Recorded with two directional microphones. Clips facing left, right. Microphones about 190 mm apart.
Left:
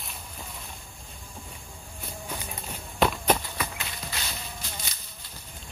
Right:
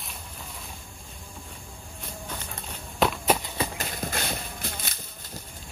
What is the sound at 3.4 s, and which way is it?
Clip-clop, 25° right (ahead or behind).